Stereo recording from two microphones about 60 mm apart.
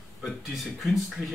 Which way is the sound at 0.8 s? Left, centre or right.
Centre.